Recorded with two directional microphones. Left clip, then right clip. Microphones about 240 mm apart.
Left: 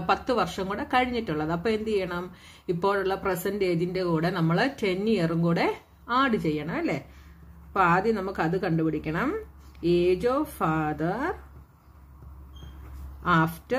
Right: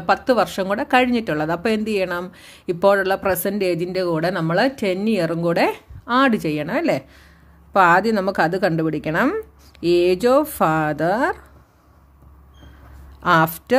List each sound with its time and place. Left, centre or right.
0.0 s a woman's voice: right
13.2 s a woman's voice: right